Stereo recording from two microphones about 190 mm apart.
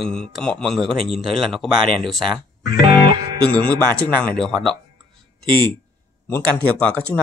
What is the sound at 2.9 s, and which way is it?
Music, 20° right (ahead or behind).